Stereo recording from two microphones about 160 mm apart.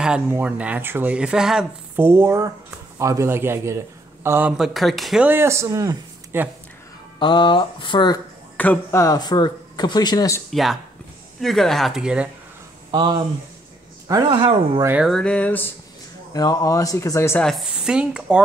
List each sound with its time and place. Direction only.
0.0 s speech: 10° right (ahead or behind)
7.2 s speech: 30° left (ahead or behind)
8.5 s speech: 10° left (ahead or behind)
9.0 s speech: 25° left (ahead or behind)
10.5 s speech: centre (ahead or behind)
12.9 s speech: 25° right (ahead or behind)
14.3 s speech: 35° right (ahead or behind)
15.0 s speech: centre (ahead or behind)
16.3 s speech: 20° left (ahead or behind)
17.5 s speech: 5° right (ahead or behind)